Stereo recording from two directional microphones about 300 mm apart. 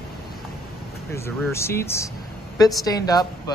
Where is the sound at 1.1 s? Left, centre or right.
Centre.